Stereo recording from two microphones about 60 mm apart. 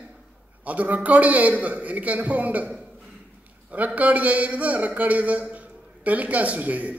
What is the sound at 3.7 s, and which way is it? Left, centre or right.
A man's voice, right.